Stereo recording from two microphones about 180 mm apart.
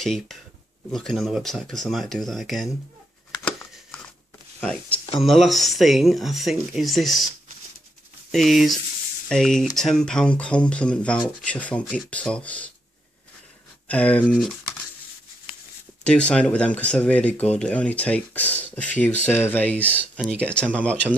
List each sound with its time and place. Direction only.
0.0 s speech: centre (ahead or behind)
4.6 s speech: 5° left (ahead or behind)
8.3 s speech: centre (ahead or behind)
13.8 s speech: 10° left (ahead or behind)
16.0 s speech: 5° left (ahead or behind)